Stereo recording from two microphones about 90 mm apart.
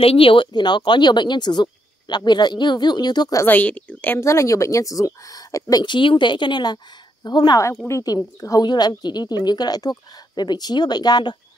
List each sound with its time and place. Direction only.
0.0 s speech: 90° left
0.5 s speech: 55° left (ahead or behind)
3.4 s speech: 20° left (ahead or behind)
4.2 s speech: 35° left (ahead or behind); by 11.3 s 50° left (ahead or behind)